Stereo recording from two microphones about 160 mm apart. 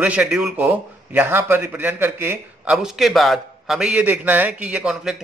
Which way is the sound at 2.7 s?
Centre (ahead or behind).